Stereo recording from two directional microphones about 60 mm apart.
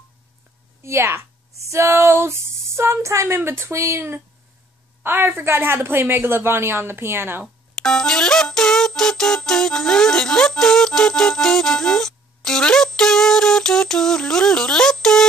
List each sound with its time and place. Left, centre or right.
0.8 s speech: right
5.0 s a woman's voice: right
7.4 s speech: centre